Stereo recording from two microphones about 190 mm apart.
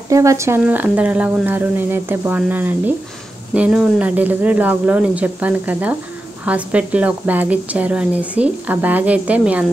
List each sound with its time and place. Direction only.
0.1 s a woman's voice: 15° right (ahead or behind)